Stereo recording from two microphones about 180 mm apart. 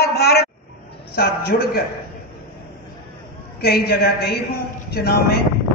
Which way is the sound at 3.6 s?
60° left (ahead or behind).